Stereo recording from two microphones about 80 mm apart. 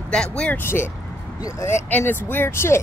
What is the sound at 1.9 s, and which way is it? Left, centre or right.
Speech, left.